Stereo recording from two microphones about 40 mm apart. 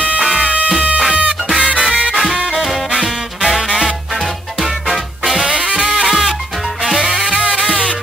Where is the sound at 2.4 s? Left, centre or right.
Centre.